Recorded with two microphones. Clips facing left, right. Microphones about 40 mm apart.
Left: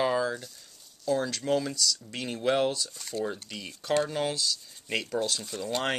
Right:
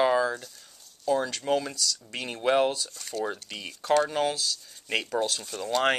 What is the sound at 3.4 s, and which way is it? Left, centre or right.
Speech, centre.